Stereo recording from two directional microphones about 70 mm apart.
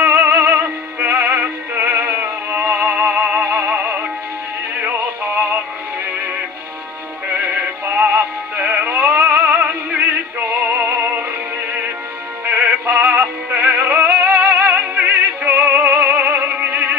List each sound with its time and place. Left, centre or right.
0.0 s music: right
7.3 s synthetic singing: right
9.6 s music: right
12.4 s synthetic singing: right